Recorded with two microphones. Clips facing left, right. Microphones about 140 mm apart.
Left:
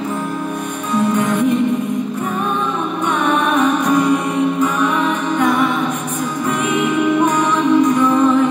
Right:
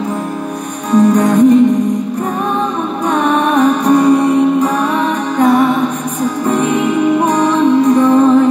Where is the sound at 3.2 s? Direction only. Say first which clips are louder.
Right 4 dB; 35° right (ahead or behind).